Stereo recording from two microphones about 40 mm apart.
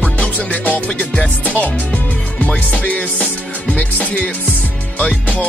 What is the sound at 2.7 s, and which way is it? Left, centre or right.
Music, left.